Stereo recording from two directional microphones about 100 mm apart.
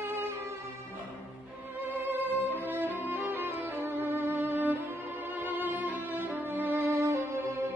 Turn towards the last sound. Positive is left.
turn(degrees=-25)  # may be behind; listen again after turning